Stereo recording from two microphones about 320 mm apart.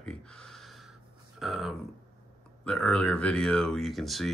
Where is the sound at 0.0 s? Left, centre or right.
Centre.